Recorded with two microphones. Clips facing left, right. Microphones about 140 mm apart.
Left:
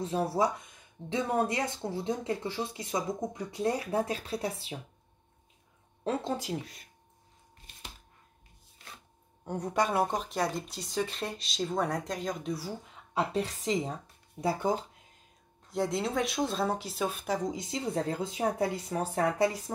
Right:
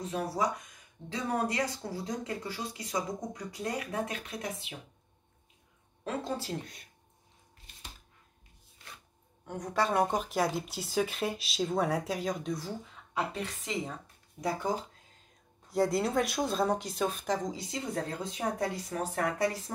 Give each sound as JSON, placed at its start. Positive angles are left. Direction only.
{"t": 0.0, "sound": "speech", "side_deg": 30}
{"t": 6.0, "sound": "speech", "side_deg": 20}
{"t": 6.6, "sound": "speech", "side_deg": 0}
{"t": 9.4, "sound": "speech", "side_deg": 30}
{"t": 9.8, "sound": "speech", "side_deg": 10}
{"t": 10.0, "sound": "speech", "side_deg": 0}
{"t": 13.4, "sound": "a woman's voice", "side_deg": 35}
{"t": 14.4, "sound": "speech", "side_deg": 25}
{"t": 15.7, "sound": "speech", "side_deg": 0}
{"t": 17.5, "sound": "speech", "side_deg": 20}